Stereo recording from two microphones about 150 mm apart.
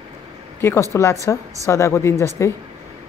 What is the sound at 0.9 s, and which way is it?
A woman's voice, 20° left (ahead or behind).